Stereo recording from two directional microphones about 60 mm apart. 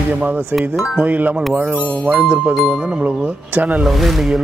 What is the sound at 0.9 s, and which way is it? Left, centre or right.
Speech, right.